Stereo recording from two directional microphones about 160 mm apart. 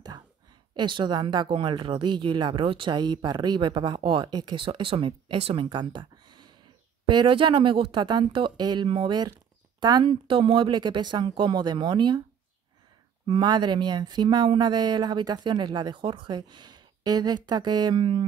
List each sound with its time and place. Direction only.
0.7 s speech: 30° right (ahead or behind)
13.3 s speech: 30° right (ahead or behind)